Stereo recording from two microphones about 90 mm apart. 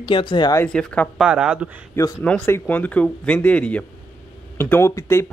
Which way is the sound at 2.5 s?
20° left (ahead or behind).